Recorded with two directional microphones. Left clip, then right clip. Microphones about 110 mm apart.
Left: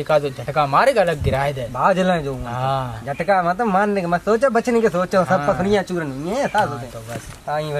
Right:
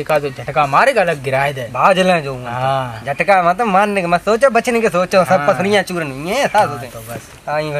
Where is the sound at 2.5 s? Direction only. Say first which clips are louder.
Right 5 dB; 5° left (ahead or behind).